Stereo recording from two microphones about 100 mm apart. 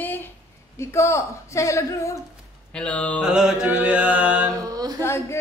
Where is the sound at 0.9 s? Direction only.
30° left (ahead or behind).